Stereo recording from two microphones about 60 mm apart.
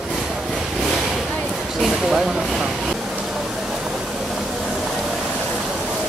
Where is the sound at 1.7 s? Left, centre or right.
Centre.